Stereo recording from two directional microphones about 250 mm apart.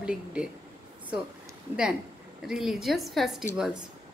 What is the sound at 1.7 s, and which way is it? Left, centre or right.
Speech, centre.